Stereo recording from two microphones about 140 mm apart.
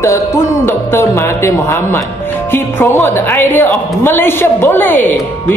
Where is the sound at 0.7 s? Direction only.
20° left (ahead or behind).